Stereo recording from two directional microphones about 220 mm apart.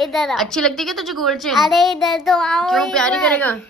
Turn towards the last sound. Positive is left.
turn(degrees=5)  # may be behind; listen again after turning